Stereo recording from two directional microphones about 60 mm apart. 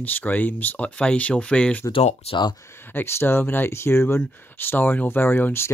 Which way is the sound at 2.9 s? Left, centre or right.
Left.